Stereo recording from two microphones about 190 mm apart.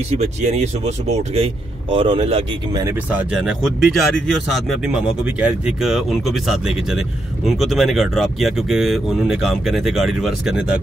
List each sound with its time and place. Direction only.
0.2 s speech: 35° right (ahead or behind); by 3.0 s 20° right (ahead or behind)
3.1 s speech: 5° right (ahead or behind)